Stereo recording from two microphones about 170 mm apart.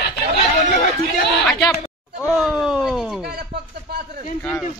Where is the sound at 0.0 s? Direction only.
55° left (ahead or behind).